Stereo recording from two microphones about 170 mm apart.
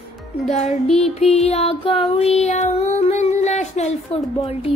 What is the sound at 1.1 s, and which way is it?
Child singing, 40° left (ahead or behind).